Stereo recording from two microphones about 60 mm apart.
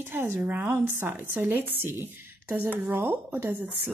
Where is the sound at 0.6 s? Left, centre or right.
Right.